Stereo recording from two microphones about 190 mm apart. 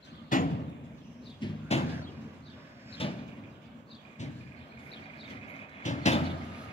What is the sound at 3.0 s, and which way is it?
Vehicle, 30° left (ahead or behind).